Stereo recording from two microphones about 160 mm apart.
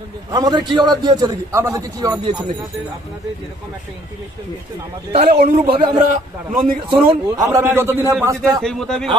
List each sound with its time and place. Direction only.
0.3 s a man's voice: 25° right (ahead or behind)
5.4 s a man's voice: 70° right (ahead or behind)
5.9 s a man's voice: 55° right (ahead or behind)
6.9 s a man's voice: 20° right (ahead or behind)
8.4 s a man's voice: centre (ahead or behind)